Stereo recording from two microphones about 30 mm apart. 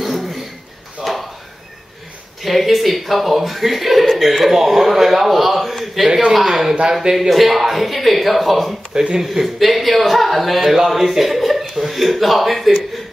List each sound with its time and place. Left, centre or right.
0.0 s a sound: centre
2.4 s speech: centre
6.9 s speech: centre
7.2 s speech: centre
8.9 s speech: right
9.2 s speech: centre